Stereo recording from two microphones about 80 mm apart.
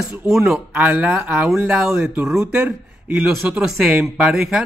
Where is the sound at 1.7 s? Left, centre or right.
Centre.